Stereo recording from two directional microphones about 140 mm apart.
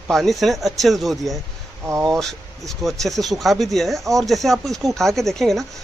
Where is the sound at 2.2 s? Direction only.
5° left (ahead or behind).